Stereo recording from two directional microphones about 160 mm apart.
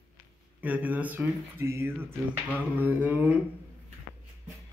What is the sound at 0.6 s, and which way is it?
Speech, 10° right (ahead or behind).